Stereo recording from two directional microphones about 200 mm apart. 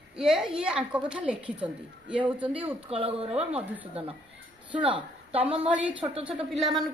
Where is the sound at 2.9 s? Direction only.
30° right (ahead or behind).